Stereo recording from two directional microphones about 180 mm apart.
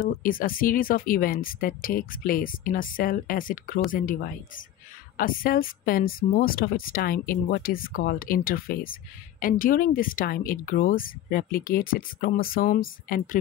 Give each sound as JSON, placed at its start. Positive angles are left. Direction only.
{"t": 0.0, "sound": "speech", "side_deg": 50}